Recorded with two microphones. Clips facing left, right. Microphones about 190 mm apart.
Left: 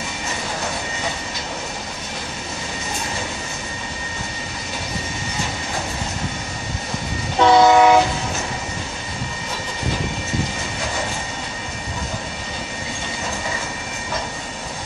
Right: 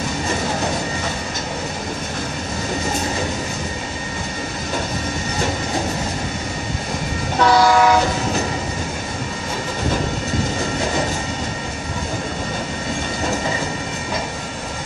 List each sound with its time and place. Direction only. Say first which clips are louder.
7.3 s train: left 2 dB; 20° left (ahead or behind)